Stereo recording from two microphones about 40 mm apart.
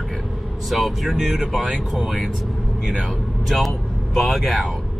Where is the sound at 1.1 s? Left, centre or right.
Centre.